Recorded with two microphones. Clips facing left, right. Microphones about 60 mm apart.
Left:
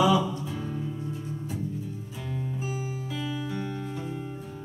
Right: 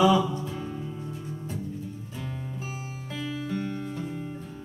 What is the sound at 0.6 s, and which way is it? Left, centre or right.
Music, centre.